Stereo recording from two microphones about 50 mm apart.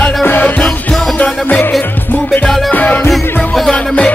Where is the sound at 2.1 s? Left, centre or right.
Left.